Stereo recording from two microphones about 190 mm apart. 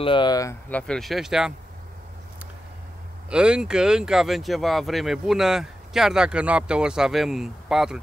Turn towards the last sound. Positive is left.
turn(degrees=0)  # may be behind; listen again after turning